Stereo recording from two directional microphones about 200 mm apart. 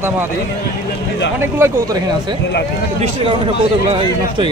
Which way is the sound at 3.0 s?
30° right (ahead or behind).